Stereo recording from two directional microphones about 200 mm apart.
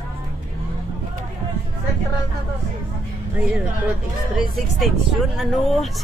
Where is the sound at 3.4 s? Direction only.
5° right (ahead or behind).